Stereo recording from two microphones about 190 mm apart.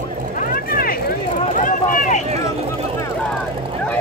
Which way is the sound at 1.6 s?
45° left (ahead or behind).